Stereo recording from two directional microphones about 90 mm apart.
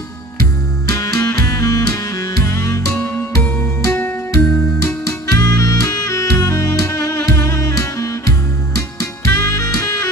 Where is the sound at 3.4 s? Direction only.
15° left (ahead or behind).